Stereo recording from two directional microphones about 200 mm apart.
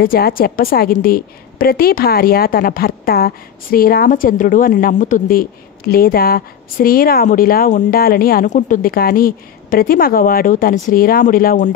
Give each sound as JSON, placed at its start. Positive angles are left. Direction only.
{"t": 0.0, "sound": "a woman's voice", "side_deg": 50}